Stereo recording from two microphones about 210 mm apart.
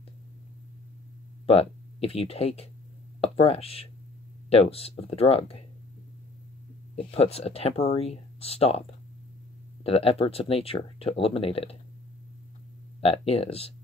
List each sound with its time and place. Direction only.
1.4 s speech: 30° left (ahead or behind)
7.0 s speech: 30° left (ahead or behind)
13.0 s speech: 30° left (ahead or behind)